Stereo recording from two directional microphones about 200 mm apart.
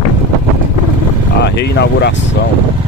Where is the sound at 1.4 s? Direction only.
60° left (ahead or behind).